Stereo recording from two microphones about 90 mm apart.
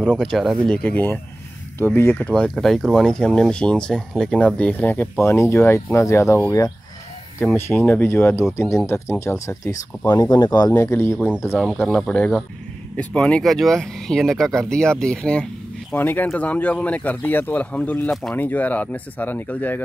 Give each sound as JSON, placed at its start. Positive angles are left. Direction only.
{"t": 0.0, "sound": "speech", "side_deg": 5}
{"t": 0.7, "sound": "speech", "side_deg": 15}
{"t": 2.1, "sound": "speech", "side_deg": 10}
{"t": 10.3, "sound": "speech", "side_deg": 50}
{"t": 10.7, "sound": "speech", "side_deg": 30}
{"t": 11.5, "sound": "speech", "side_deg": 10}
{"t": 13.4, "sound": "speech", "side_deg": 5}
{"t": 15.9, "sound": "speech", "side_deg": 20}